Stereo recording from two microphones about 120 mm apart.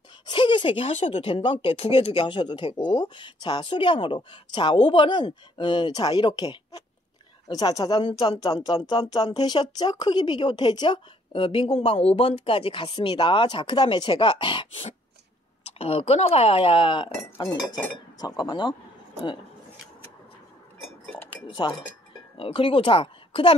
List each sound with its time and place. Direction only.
0.3 s a sound: 40° left (ahead or behind)
0.9 s speech: 50° left (ahead or behind)
12.9 s speech: 40° left (ahead or behind)
15.8 s speech: 60° left (ahead or behind); by 18.7 s 40° left (ahead or behind)
21.5 s speech: 40° left (ahead or behind)